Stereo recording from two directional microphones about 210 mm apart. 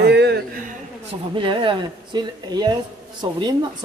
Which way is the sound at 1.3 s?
25° right (ahead or behind).